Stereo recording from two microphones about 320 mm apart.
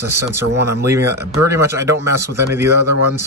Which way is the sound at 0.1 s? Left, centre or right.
Centre.